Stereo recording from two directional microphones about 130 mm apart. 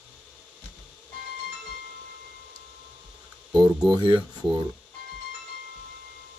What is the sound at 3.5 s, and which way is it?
Speech, 35° right (ahead or behind).